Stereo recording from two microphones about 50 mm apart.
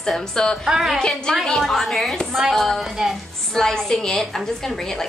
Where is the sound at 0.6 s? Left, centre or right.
Centre.